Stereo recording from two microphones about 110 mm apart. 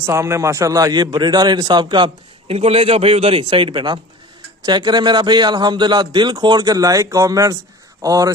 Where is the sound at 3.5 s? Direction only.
45° right (ahead or behind).